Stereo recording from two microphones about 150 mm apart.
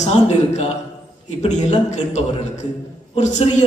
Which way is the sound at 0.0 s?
50° left (ahead or behind).